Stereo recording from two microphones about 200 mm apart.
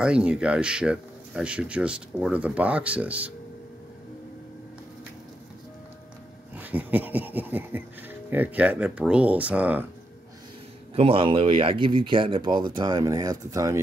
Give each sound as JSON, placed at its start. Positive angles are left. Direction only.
{"t": 0.0, "sound": "speech", "side_deg": -5}
{"t": 6.5, "sound": "speech", "side_deg": -10}
{"t": 11.0, "sound": "speech", "side_deg": -25}